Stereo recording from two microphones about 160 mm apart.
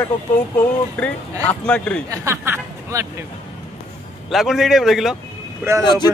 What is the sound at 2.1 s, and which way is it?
Speech, 15° right (ahead or behind).